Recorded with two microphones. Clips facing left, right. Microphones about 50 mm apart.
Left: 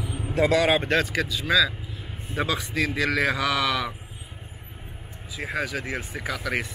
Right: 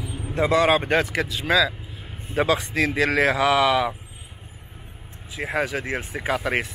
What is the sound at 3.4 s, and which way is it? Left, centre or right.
Speech, centre.